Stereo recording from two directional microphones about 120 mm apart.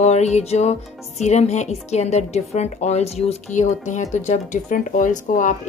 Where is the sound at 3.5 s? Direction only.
90° left.